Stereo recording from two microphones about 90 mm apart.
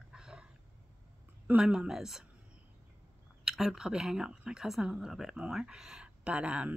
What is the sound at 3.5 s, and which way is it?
Speech, 5° right (ahead or behind).